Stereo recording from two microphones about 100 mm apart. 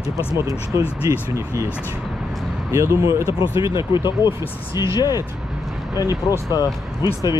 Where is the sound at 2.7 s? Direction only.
30° right (ahead or behind).